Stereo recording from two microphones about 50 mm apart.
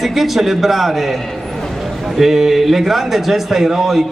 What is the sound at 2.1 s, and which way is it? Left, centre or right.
A man's voice, centre.